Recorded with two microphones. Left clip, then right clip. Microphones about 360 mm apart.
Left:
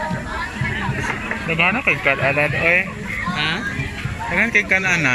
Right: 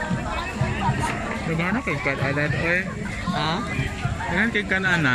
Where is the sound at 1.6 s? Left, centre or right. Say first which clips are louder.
Left 11 dB; centre.